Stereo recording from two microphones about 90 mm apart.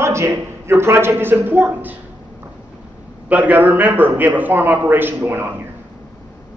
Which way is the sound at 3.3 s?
15° right (ahead or behind).